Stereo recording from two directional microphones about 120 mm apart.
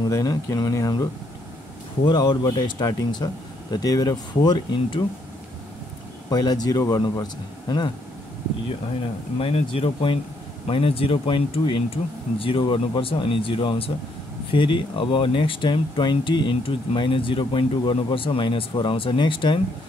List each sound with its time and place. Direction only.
0.1 s speech: 30° left (ahead or behind)
2.0 s speech: 35° left (ahead or behind)
6.3 s speech: 35° left (ahead or behind)
9.4 s speech: 50° left (ahead or behind)